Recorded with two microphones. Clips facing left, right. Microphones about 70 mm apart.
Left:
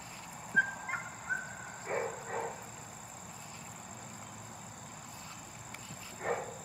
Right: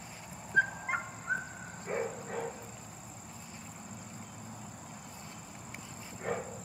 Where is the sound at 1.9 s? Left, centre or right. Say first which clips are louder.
Even; centre.